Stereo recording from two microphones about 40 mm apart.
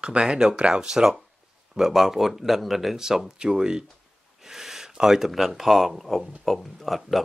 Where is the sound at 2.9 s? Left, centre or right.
Centre.